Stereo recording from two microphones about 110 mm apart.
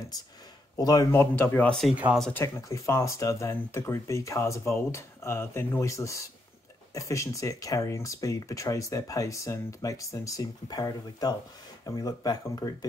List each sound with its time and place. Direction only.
0.7 s speech: 30° left (ahead or behind)
1.1 s speech: 20° left (ahead or behind)
1.7 s speech: centre (ahead or behind)
2.3 s speech: 25° left (ahead or behind)